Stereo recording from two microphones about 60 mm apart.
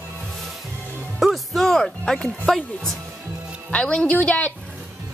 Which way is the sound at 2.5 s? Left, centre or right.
Centre.